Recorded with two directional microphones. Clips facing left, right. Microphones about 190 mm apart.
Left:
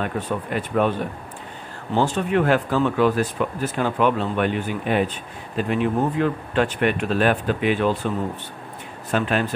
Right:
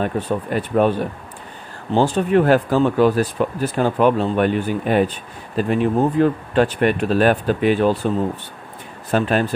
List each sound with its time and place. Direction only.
0.0 s speech: 35° right (ahead or behind)
2.0 s speech: 35° right (ahead or behind)
9.1 s speech: 35° right (ahead or behind)